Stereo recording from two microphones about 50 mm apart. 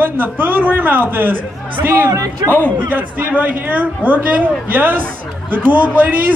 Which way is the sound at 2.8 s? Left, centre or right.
Right.